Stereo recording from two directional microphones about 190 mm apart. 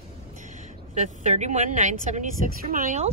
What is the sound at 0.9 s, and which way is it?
Speech, 40° right (ahead or behind).